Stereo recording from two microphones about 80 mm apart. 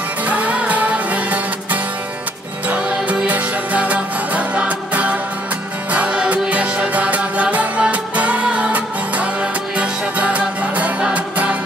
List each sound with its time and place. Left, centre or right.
0.2 s music: centre